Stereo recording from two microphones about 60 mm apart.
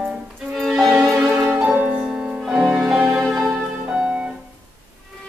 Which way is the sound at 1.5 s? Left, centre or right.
Right.